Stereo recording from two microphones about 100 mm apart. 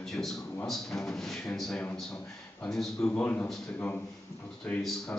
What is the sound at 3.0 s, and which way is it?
Speech, 20° left (ahead or behind).